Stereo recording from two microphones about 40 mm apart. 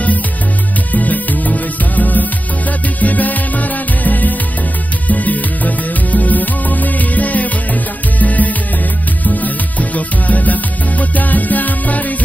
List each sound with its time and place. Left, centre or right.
0.9 s music: left